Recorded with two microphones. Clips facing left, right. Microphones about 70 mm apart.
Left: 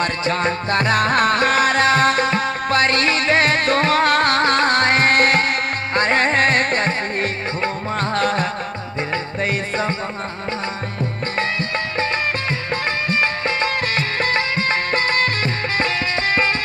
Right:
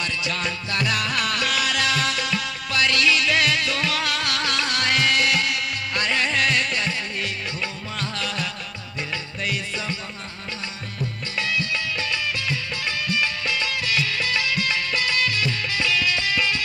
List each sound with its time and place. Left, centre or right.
0.0 s music: left
11.3 s music: left